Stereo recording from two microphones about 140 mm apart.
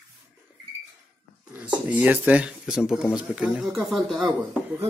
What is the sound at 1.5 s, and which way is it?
Speech, 10° right (ahead or behind).